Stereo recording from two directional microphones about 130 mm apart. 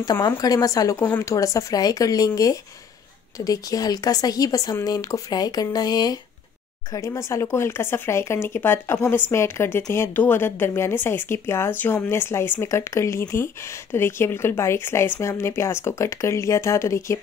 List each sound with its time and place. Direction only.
0.0 s speech: 30° left (ahead or behind)